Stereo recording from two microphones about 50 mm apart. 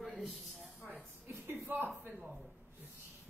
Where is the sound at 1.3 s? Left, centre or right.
Right.